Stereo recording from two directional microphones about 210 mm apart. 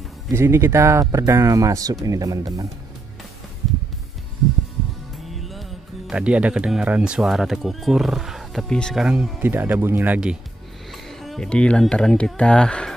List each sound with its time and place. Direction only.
0.3 s speech: 10° right (ahead or behind)
5.2 s speech: centre (ahead or behind)